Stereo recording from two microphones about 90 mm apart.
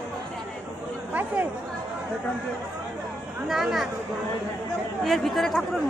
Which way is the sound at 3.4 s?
5° right (ahead or behind).